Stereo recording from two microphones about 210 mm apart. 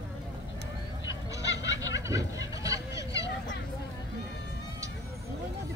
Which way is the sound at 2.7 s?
15° right (ahead or behind).